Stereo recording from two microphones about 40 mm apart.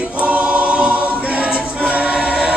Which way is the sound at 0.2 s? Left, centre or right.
Right.